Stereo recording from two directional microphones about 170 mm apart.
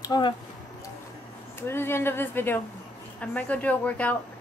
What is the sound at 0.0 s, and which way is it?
Speech, 25° left (ahead or behind).